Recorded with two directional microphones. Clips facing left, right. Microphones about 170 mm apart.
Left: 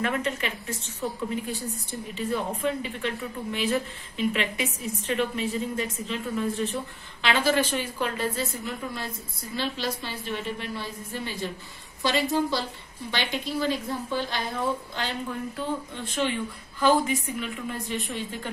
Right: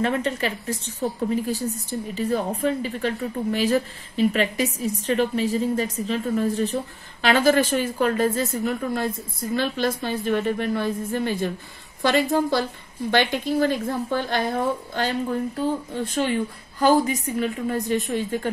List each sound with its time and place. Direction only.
0.0 s a woman's voice: 35° right (ahead or behind)